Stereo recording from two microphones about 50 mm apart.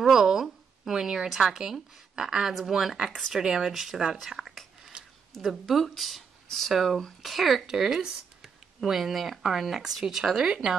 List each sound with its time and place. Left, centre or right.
0.0 s speech: centre
3.1 s speech: centre
3.3 s speech: centre
5.0 s a sound: centre
5.4 s speech: centre